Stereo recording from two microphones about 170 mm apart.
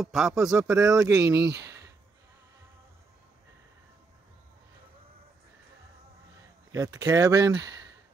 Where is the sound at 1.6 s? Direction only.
20° right (ahead or behind).